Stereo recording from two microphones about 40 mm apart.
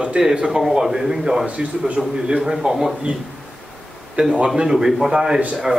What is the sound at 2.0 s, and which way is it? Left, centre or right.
Speech, centre.